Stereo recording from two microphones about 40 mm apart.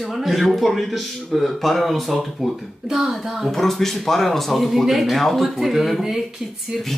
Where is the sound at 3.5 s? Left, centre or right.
Centre.